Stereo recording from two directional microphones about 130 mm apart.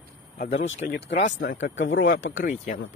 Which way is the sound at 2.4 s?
90° left.